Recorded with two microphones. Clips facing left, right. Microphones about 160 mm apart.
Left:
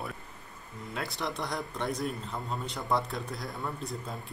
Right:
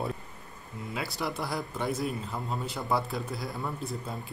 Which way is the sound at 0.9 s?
Centre (ahead or behind).